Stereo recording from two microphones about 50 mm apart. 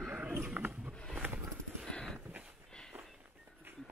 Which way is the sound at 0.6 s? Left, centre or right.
Right.